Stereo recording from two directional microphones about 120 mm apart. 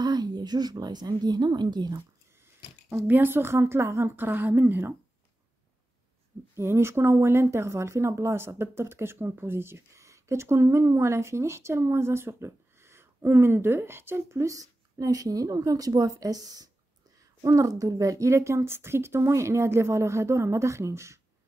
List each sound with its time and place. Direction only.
0.0 s speech: 35° right (ahead or behind)
2.9 s speech: 15° right (ahead or behind)
6.5 s speech: 20° right (ahead or behind)